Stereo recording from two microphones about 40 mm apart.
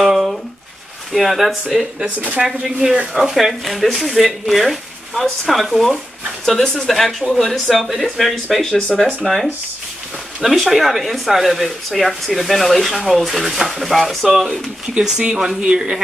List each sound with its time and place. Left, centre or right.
0.0 s a sound: centre
1.1 s speech: centre
2.4 s speech: centre
3.3 s speech: centre
6.4 s speech: centre
15.0 s a man's voice: right